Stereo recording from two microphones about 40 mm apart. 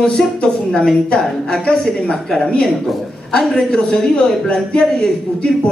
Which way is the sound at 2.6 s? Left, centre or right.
Centre.